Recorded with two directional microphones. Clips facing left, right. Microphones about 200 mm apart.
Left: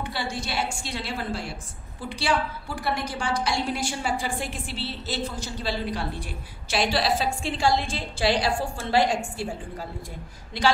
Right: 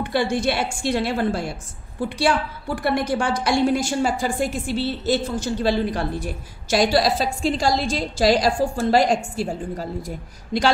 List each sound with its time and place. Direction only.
0.3 s a woman's voice: 55° right (ahead or behind); by 10.1 s 40° right (ahead or behind)